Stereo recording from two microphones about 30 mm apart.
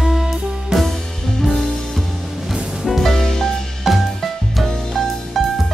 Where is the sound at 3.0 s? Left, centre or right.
Centre.